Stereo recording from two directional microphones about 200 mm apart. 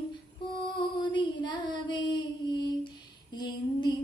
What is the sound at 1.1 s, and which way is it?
Child singing, 25° left (ahead or behind).